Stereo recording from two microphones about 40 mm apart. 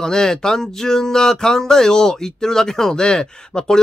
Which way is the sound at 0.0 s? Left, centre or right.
Centre.